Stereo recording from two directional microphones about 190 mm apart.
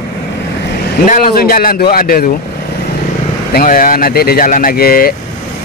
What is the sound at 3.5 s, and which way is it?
Speech, 45° left (ahead or behind).